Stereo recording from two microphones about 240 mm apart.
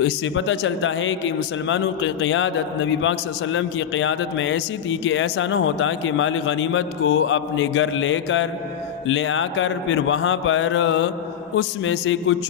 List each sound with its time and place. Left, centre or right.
0.0 s a man's voice: left